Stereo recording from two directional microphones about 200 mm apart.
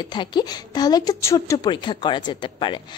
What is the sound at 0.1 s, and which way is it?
A woman's voice, 20° left (ahead or behind).